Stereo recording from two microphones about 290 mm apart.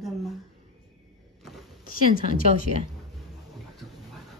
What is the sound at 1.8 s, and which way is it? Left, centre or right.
Speech, left.